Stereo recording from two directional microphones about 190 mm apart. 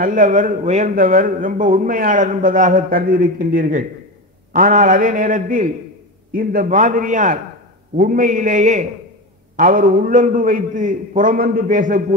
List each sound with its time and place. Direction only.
0.0 s a man's voice: 45° right (ahead or behind)